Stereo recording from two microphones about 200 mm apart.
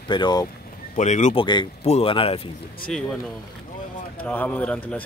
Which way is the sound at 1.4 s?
25° left (ahead or behind).